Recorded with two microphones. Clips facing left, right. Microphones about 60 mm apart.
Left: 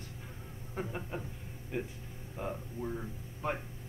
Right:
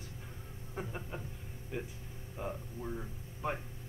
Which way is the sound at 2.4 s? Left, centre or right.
Centre.